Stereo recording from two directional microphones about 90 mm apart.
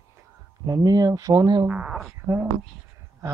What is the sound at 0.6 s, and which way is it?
Speech, 45° right (ahead or behind).